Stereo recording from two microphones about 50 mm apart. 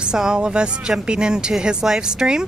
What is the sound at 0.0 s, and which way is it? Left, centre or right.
Speech, centre.